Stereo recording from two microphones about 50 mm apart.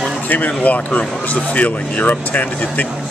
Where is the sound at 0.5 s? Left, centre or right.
Left.